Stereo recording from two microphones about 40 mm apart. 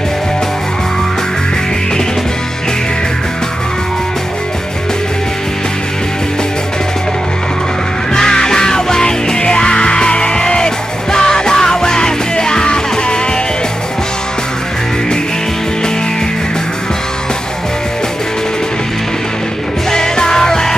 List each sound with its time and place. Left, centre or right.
8.1 s music: centre
19.9 s music: centre